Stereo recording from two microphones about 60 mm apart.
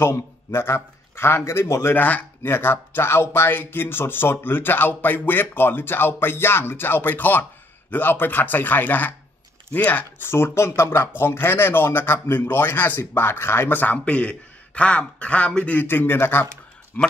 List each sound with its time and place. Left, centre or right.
0.5 s a man's voice: left
2.0 s a man's voice: left
2.4 s speech: left
10.2 s a man's voice: left
13.9 s a man's voice: left
15.9 s speech: left
17.0 s a man's voice: left